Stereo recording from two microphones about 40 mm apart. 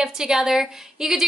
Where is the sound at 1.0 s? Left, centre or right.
Centre.